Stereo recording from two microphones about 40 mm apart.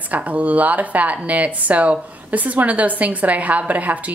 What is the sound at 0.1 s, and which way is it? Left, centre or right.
A woman's voice, right.